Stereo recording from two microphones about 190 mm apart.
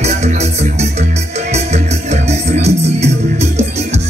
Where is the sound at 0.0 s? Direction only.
35° right (ahead or behind).